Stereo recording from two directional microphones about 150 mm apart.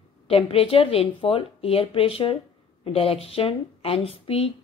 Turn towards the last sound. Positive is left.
turn(degrees=40)  # may be behind; listen again after turning